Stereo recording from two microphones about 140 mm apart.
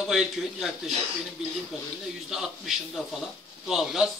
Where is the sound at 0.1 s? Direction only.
Centre (ahead or behind).